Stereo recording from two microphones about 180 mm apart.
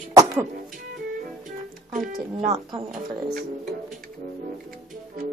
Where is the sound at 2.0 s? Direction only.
50° right (ahead or behind).